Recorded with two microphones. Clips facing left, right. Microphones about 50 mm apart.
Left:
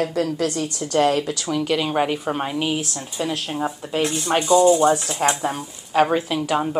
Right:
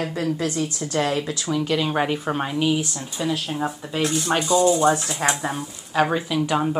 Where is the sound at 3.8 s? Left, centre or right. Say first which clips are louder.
Even; left.